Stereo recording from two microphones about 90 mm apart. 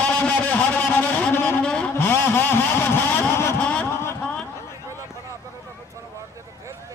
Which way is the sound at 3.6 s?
10° left (ahead or behind).